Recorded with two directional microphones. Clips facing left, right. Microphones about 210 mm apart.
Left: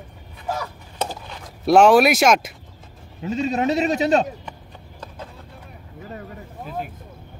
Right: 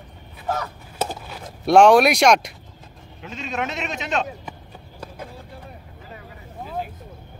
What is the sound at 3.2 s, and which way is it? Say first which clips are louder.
A man's voice: left 7 dB; 35° left (ahead or behind).